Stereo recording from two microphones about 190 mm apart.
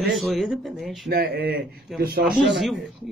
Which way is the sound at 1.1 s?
55° right (ahead or behind).